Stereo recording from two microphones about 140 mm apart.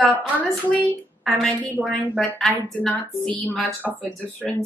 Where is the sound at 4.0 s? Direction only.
10° left (ahead or behind).